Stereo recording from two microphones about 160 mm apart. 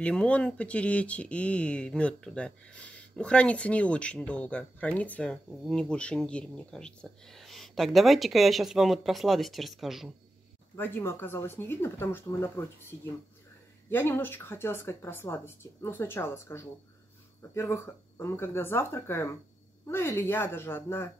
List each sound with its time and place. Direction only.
0.0 s speech: 5° left (ahead or behind)
10.8 s speech: 15° left (ahead or behind)
13.8 s speech: 15° left (ahead or behind)